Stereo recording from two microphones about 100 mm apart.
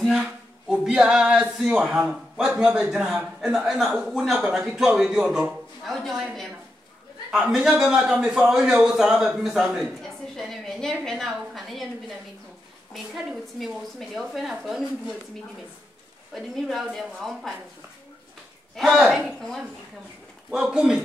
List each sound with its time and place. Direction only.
0.2 s a man's voice: 10° right (ahead or behind)
7.2 s a man's voice: 5° right (ahead or behind)
12.9 s a man's voice: centre (ahead or behind)
16.3 s a man's voice: centre (ahead or behind)
18.8 s a man's voice: centre (ahead or behind)
20.7 s speech: 5° right (ahead or behind)